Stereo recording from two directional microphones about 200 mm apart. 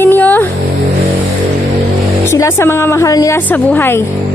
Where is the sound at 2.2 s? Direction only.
15° left (ahead or behind).